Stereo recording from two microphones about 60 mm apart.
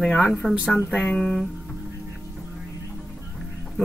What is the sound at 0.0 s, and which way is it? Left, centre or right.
Speech, centre.